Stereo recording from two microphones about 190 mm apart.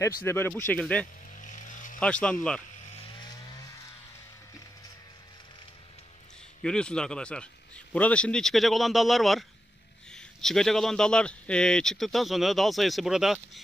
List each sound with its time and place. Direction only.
0.0 s speech: 10° left (ahead or behind)
1.3 s vehicle: 40° left (ahead or behind)
2.0 s a man's voice: 5° left (ahead or behind)
2.9 s chainsaw: 25° left (ahead or behind)
6.6 s a man's voice: 5° left (ahead or behind)